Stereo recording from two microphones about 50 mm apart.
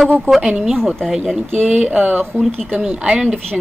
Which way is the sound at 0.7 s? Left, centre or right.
Centre.